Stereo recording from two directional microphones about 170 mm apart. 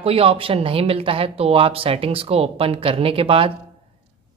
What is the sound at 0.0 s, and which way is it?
Speech, 35° right (ahead or behind).